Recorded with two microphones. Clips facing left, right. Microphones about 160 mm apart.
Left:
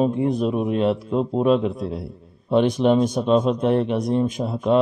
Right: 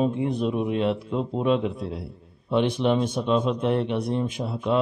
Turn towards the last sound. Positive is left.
turn(degrees=45)  # may be behind; listen again after turning